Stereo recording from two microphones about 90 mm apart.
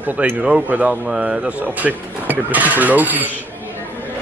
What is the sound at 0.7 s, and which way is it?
Speech, 15° right (ahead or behind).